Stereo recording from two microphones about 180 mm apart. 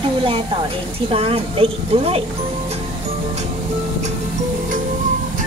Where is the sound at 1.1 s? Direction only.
30° right (ahead or behind).